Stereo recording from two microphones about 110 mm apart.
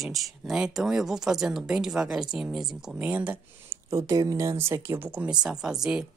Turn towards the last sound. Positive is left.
turn(degrees=-5)  # may be behind; listen again after turning